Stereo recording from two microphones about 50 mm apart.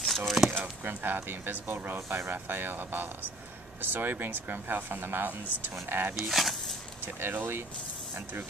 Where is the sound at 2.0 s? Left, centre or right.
Right.